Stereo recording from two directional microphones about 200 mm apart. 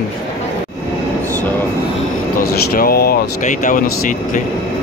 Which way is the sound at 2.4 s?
45° left (ahead or behind).